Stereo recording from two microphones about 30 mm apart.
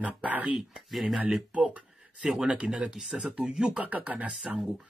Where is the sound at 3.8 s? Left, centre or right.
Right.